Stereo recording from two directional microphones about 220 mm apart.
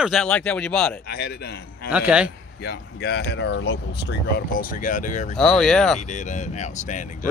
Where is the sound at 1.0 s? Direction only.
45° left (ahead or behind).